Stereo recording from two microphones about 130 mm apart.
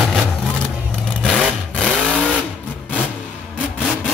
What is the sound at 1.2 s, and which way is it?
Vehicle, 5° left (ahead or behind).